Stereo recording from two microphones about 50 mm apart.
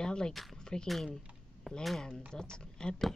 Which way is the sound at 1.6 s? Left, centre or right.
Centre.